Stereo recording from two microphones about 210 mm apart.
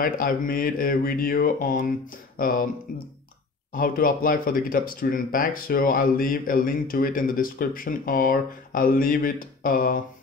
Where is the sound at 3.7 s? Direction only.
40° left (ahead or behind).